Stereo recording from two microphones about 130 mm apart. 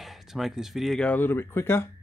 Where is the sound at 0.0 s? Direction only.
Centre (ahead or behind).